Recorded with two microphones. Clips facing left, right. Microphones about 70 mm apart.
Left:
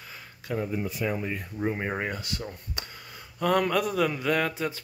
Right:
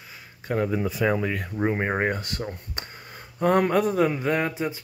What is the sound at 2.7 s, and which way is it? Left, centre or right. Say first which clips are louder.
Speech: right 2 dB; right.